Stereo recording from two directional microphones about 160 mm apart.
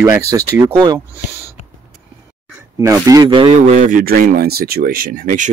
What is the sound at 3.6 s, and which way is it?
Speech, 55° right (ahead or behind).